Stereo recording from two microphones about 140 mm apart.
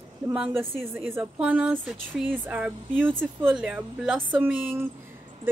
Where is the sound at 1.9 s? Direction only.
5° left (ahead or behind).